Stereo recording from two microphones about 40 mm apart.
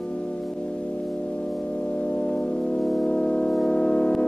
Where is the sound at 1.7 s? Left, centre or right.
Left.